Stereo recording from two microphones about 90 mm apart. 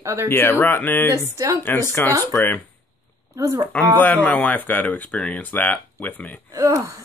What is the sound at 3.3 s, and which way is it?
Speech, 40° right (ahead or behind).